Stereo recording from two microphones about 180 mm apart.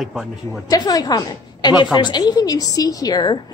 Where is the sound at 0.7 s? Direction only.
20° left (ahead or behind).